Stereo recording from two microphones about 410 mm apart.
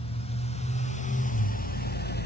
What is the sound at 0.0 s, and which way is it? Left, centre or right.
Vehicle, centre.